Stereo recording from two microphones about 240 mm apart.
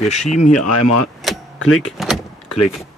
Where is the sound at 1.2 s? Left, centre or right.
Centre.